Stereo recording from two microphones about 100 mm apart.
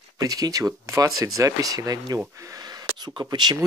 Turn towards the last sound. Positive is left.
turn(degrees=-45)  # may be behind; listen again after turning